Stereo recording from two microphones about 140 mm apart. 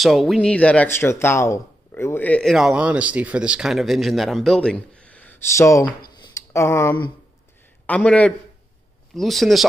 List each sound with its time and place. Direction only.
0.0 s speech: centre (ahead or behind)
2.5 s speech: 5° right (ahead or behind); by 5.9 s 20° left (ahead or behind)
6.1 s a sound: 30° left (ahead or behind)
6.5 s a man's voice: 20° left (ahead or behind); by 9.7 s centre (ahead or behind)